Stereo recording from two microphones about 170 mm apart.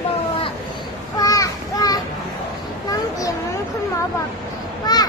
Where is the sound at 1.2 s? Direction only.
20° left (ahead or behind).